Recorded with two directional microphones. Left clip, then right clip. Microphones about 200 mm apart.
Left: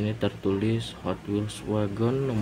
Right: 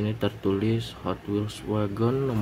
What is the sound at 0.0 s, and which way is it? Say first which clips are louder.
A man's voice: even; 5° right (ahead or behind).